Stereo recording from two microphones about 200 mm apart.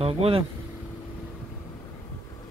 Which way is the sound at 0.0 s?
30° right (ahead or behind).